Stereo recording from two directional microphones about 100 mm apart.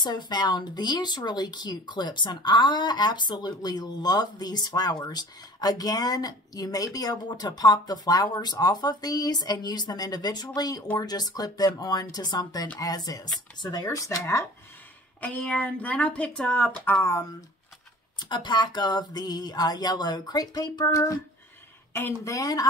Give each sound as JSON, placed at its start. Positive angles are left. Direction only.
{"t": 0.0, "sound": "speech", "side_deg": 45}
{"t": 15.1, "sound": "speech", "side_deg": 15}
{"t": 16.9, "sound": "speech", "side_deg": 30}
{"t": 18.2, "sound": "speech", "side_deg": 45}